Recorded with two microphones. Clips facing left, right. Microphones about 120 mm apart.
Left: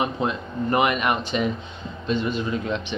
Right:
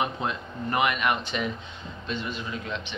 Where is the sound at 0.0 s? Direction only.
25° left (ahead or behind).